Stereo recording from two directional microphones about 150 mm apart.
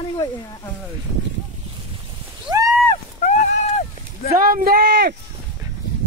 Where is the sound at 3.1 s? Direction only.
55° left (ahead or behind).